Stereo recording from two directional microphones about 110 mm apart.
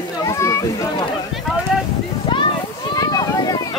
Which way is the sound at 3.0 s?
35° left (ahead or behind).